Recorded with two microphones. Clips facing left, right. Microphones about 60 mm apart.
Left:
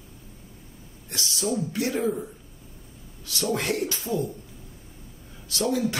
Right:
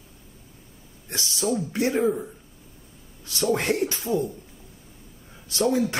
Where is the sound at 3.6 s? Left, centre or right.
Right.